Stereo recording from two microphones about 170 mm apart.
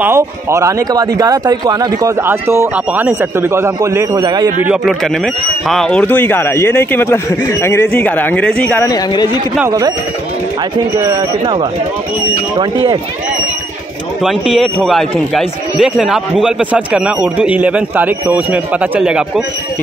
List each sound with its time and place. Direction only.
0.0 s speech: 15° right (ahead or behind)
4.6 s speech: centre (ahead or behind)
8.8 s speech: 25° left (ahead or behind)
9.7 s speech: 20° right (ahead or behind)
11.0 s speech: 25° right (ahead or behind)
14.2 s speech: centre (ahead or behind)